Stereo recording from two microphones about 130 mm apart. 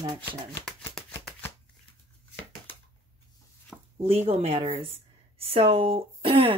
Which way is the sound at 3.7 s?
5° left (ahead or behind).